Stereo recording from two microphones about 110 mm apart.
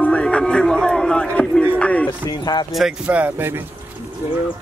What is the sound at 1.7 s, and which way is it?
Music, 15° left (ahead or behind).